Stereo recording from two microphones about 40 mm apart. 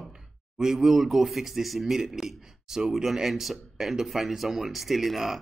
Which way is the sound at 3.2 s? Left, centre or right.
Centre.